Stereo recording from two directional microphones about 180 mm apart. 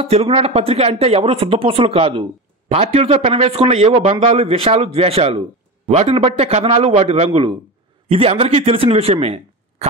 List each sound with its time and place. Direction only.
0.0 s speech: 35° right (ahead or behind)